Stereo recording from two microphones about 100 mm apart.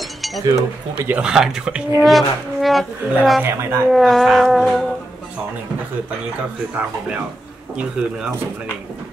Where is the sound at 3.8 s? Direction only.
Centre (ahead or behind).